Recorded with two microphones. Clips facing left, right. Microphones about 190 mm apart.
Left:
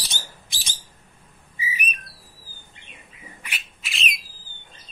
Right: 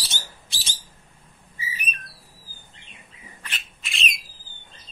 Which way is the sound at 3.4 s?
5° left (ahead or behind).